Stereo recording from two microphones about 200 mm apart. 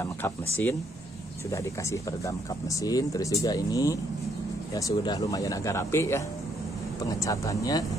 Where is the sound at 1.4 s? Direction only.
15° left (ahead or behind).